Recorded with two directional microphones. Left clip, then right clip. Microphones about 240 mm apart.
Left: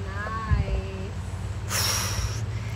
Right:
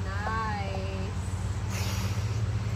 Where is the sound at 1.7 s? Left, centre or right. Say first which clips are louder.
Left 11 dB; left.